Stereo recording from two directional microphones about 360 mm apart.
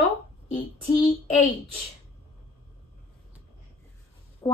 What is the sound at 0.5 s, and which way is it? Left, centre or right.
Speech, centre.